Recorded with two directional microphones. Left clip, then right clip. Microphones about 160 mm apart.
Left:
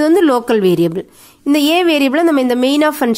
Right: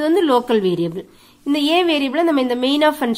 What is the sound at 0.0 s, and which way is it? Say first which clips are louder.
Speech: left 4 dB; 35° left (ahead or behind).